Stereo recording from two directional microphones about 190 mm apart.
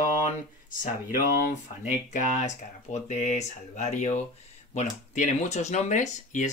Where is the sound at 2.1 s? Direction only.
40° left (ahead or behind).